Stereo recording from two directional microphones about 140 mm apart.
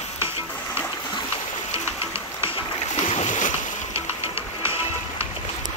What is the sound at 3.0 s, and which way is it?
Boat, 55° left (ahead or behind).